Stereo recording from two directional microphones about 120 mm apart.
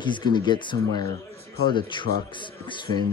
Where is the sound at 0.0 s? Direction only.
40° left (ahead or behind).